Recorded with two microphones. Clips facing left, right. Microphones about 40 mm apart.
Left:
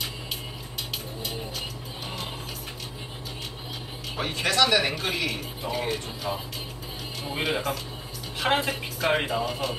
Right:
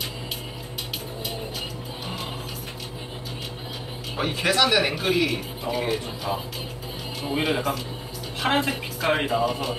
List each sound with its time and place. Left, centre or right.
4.2 s speech: centre